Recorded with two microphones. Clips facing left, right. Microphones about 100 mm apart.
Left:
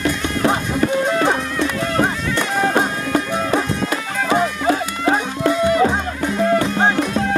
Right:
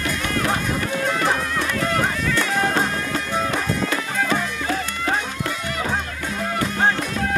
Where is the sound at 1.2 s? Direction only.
25° left (ahead or behind).